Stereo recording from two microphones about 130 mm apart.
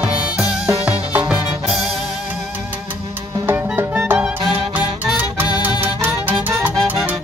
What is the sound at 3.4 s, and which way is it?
Music, 15° right (ahead or behind).